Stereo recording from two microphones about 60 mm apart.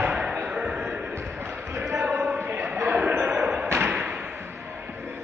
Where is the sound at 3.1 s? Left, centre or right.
Right.